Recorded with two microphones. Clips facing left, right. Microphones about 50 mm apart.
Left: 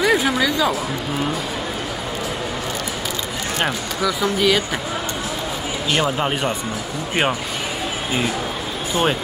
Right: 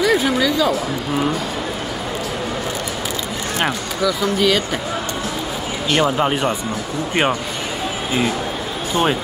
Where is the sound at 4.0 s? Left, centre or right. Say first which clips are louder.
Right 1 dB; centre.